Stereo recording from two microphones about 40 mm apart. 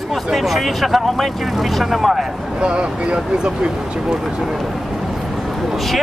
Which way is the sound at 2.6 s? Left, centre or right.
Right.